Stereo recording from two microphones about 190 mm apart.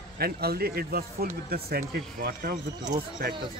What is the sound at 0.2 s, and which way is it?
Speech, 55° right (ahead or behind).